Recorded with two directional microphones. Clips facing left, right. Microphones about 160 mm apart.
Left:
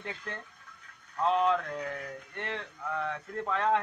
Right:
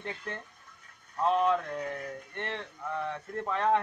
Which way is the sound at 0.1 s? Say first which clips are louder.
Even; 25° right (ahead or behind).